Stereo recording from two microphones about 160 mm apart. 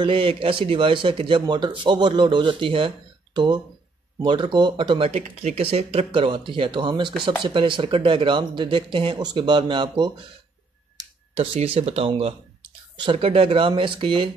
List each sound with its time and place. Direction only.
0.0 s speech: 35° right (ahead or behind)
11.3 s speech: 35° right (ahead or behind)